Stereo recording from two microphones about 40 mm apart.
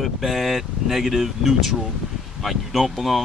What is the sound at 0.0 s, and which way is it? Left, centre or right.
Speech, centre.